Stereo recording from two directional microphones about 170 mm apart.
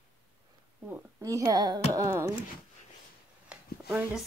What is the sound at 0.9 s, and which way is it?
Speech, 20° right (ahead or behind).